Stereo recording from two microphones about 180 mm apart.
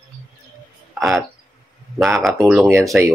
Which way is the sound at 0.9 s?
Centre (ahead or behind).